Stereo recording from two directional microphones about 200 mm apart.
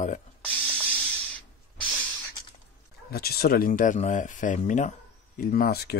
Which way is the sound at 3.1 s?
50° left (ahead or behind).